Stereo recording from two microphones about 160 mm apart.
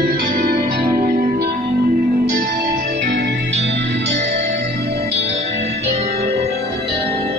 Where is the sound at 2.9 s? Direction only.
90° right.